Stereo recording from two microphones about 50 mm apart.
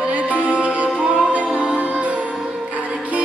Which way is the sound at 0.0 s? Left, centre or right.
Right.